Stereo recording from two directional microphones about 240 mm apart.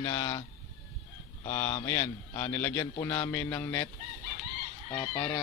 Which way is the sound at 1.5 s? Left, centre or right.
Centre.